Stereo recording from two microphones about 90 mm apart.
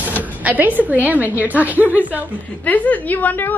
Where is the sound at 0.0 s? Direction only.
20° right (ahead or behind).